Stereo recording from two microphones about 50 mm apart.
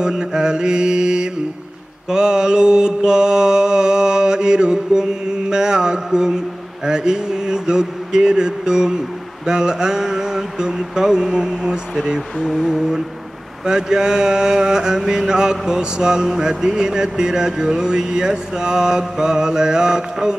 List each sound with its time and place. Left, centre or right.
0.0 s mantra: centre